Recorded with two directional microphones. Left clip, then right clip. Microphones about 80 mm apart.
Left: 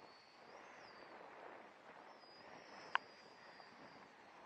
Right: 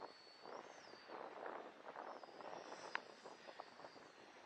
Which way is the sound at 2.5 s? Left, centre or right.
Right.